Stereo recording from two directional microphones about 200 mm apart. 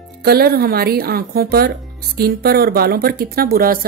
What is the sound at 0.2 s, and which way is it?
Speech, 50° right (ahead or behind).